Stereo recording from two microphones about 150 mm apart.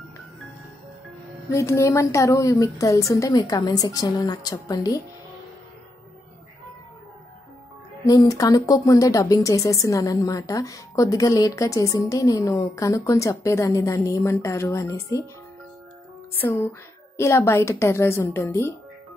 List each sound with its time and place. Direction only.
1.5 s speech: 20° left (ahead or behind)
8.1 s speech: 25° left (ahead or behind)
16.3 s a woman's voice: 15° left (ahead or behind)